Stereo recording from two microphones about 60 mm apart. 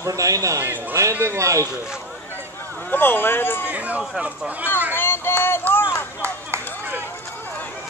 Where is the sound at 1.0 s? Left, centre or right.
Right.